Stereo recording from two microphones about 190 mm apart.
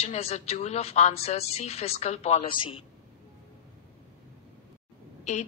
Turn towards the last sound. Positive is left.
turn(degrees=35)  # may be behind; listen again after turning